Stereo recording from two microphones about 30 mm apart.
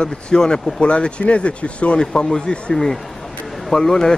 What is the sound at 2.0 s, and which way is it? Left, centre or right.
Speech, left.